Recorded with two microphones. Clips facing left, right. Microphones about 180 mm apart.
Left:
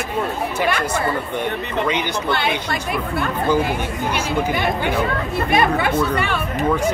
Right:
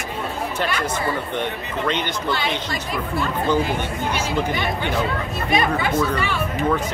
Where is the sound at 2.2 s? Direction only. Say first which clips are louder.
Left 3 dB; 60° left (ahead or behind).